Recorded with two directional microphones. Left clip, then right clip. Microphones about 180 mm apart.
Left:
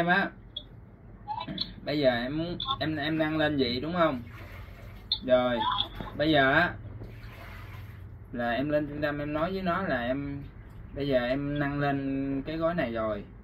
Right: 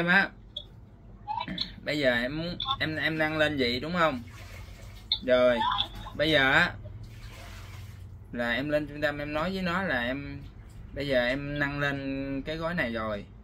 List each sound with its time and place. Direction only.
0.0 s speech: 25° right (ahead or behind)
1.2 s a sound: 20° left (ahead or behind)
1.9 s speech: 25° right (ahead or behind)
2.3 s speech: 25° left (ahead or behind)
2.8 s speech: 25° right (ahead or behind)
5.6 s speech: 20° left (ahead or behind)
6.1 s speech: 25° right (ahead or behind)
8.3 s speech: 25° right (ahead or behind)